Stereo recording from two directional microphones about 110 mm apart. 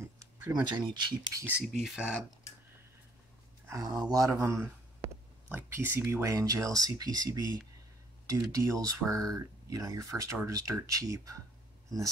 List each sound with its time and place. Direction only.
0.2 s speech: 35° right (ahead or behind)
1.7 s speech: 5° right (ahead or behind)
3.6 s speech: 30° right (ahead or behind)
6.3 s speech: 35° right (ahead or behind)